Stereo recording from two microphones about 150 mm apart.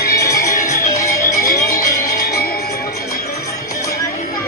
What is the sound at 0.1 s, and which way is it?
Music, 20° left (ahead or behind).